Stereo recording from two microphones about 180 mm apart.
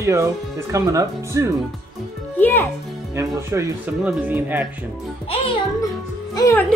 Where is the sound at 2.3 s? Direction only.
10° left (ahead or behind).